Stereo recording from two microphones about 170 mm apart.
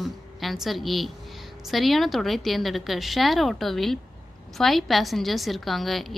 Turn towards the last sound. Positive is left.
turn(degrees=0)  # may be behind; listen again after turning